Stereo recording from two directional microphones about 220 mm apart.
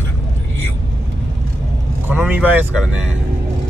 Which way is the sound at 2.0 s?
10° right (ahead or behind).